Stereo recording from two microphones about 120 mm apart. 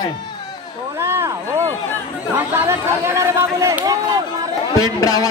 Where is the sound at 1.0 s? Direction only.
20° right (ahead or behind).